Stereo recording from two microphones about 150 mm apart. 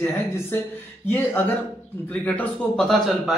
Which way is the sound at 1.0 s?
10° left (ahead or behind).